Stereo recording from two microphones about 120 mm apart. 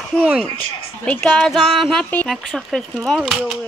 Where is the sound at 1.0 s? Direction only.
10° left (ahead or behind).